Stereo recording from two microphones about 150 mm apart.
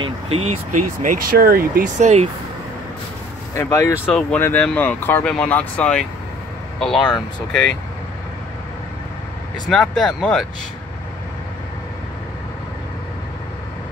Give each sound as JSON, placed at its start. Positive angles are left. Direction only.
{"t": 0.0, "sound": "speech", "side_deg": -40}
{"t": 2.0, "sound": "speech", "side_deg": -45}
{"t": 3.5, "sound": "speech", "side_deg": 20}
{"t": 9.7, "sound": "speech", "side_deg": 0}